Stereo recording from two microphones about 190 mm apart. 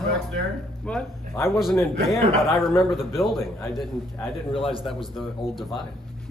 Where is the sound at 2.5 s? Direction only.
Centre (ahead or behind).